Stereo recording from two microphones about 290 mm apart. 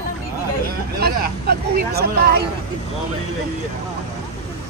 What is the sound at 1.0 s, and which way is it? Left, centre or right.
Speech, right.